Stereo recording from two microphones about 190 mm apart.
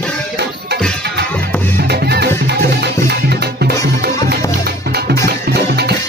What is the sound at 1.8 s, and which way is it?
Music, 60° right (ahead or behind).